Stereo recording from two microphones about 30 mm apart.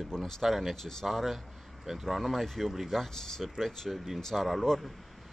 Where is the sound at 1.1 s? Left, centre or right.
Centre.